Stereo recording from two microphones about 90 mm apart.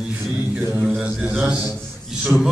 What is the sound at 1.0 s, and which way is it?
A man's voice, 15° right (ahead or behind).